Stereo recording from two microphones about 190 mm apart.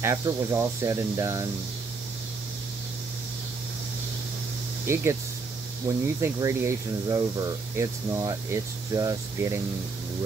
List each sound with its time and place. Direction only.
0.0 s speech: 15° right (ahead or behind)
4.8 s speech: 15° right (ahead or behind)